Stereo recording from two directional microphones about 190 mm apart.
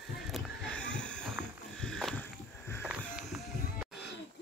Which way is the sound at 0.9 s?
5° left (ahead or behind).